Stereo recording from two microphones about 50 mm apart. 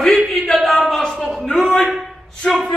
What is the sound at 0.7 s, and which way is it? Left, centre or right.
A man's voice, centre.